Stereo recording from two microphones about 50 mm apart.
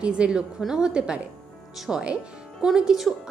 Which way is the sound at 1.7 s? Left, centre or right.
Centre.